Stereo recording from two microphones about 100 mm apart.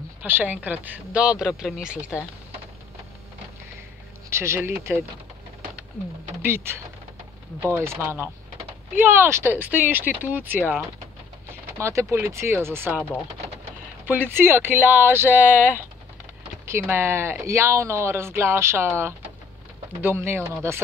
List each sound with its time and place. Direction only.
0.2 s speech: 20° right (ahead or behind)
4.3 s speech: 25° right (ahead or behind)
6.4 s speech: 25° right (ahead or behind)
11.8 s speech: 30° right (ahead or behind)
14.0 s speech: 20° right (ahead or behind)
16.9 s speech: 25° right (ahead or behind)